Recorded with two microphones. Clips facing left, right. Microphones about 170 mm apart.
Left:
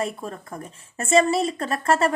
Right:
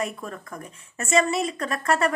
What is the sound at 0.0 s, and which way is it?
A woman's voice, 30° left (ahead or behind).